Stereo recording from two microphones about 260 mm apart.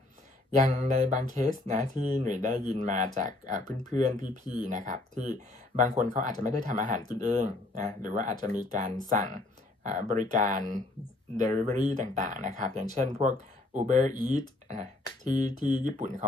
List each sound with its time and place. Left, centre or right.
0.7 s speech: right